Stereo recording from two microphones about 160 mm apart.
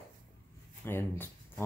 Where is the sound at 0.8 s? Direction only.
15° left (ahead or behind).